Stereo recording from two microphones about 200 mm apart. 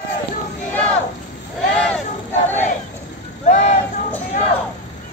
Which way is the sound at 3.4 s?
35° left (ahead or behind).